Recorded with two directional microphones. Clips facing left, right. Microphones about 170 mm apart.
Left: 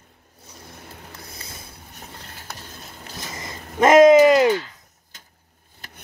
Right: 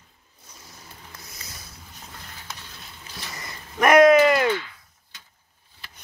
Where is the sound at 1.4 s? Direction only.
25° left (ahead or behind).